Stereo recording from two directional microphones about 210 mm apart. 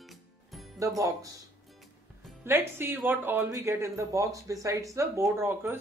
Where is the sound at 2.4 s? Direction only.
10° right (ahead or behind).